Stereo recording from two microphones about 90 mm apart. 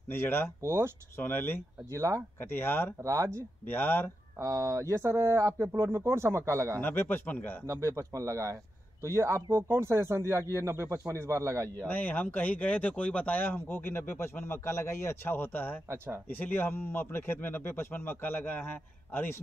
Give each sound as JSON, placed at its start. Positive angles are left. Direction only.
{"t": 0.1, "sound": "speech", "side_deg": 25}
{"t": 0.6, "sound": "speech", "side_deg": -30}
{"t": 1.1, "sound": "speech", "side_deg": 25}
{"t": 1.9, "sound": "speech", "side_deg": -35}
{"t": 2.5, "sound": "speech", "side_deg": 25}
{"t": 3.0, "sound": "speech", "side_deg": -35}
{"t": 3.7, "sound": "speech", "side_deg": 20}
{"t": 4.4, "sound": "speech", "side_deg": -35}
{"t": 6.8, "sound": "speech", "side_deg": 20}
{"t": 7.6, "sound": "speech", "side_deg": -35}
{"t": 11.9, "sound": "speech", "side_deg": 20}